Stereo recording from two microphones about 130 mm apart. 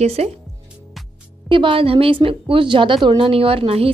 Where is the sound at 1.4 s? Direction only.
40° right (ahead or behind).